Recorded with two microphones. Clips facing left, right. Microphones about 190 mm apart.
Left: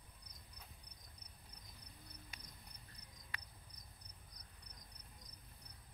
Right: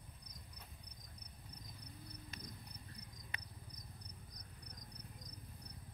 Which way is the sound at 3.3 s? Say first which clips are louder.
Even; 20° right (ahead or behind).